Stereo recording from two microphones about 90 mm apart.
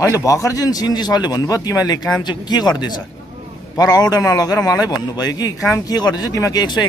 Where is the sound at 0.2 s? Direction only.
35° left (ahead or behind).